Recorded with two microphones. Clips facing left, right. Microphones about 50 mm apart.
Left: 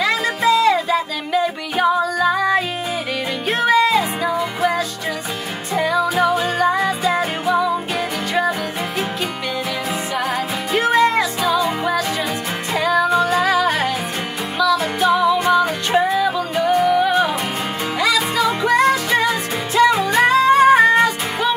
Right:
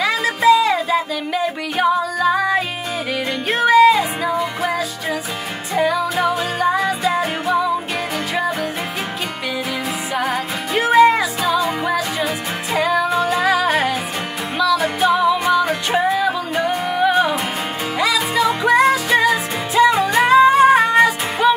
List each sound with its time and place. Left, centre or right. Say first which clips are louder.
0.0 s music: right 2 dB; centre
6.1 s music: left 2 dB; centre
10.1 s music: right 2 dB; centre
20.2 s music: right 3 dB; centre
20.8 s music: even; centre